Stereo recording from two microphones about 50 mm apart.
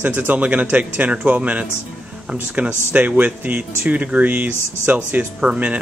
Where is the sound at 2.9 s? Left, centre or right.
Right.